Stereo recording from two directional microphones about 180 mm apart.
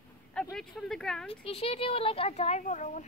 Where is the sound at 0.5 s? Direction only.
5° left (ahead or behind).